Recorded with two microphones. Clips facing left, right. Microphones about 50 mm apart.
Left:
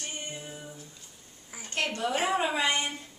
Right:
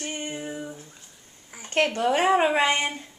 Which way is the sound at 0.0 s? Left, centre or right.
Right.